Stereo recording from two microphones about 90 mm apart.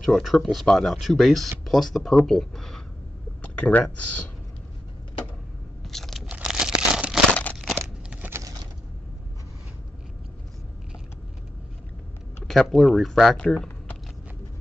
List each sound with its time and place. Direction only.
0.0 s speech: centre (ahead or behind)
3.4 s speech: 15° left (ahead or behind)
5.9 s crunch: 5° left (ahead or behind)
6.3 s crumpling: 10° right (ahead or behind)
7.6 s a sound: 15° right (ahead or behind)
8.3 s a sound: 35° right (ahead or behind)
12.4 s speech: 5° left (ahead or behind)